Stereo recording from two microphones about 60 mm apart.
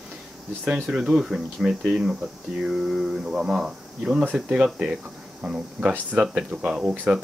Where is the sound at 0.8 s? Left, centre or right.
Centre.